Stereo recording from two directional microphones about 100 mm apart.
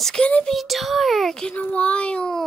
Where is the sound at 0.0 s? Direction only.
10° left (ahead or behind).